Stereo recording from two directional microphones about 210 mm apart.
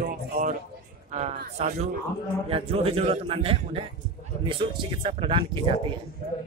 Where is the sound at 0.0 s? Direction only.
40° right (ahead or behind).